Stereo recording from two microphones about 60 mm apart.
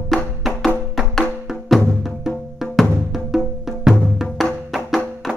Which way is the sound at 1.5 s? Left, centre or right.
Centre.